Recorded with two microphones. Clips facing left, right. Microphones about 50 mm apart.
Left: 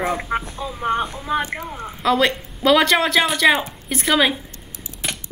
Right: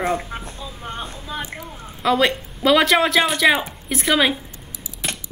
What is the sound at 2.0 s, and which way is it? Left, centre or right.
Speech, centre.